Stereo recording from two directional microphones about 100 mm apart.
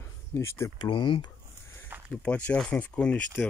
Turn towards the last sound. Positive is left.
turn(degrees=15)  # may be behind; listen again after turning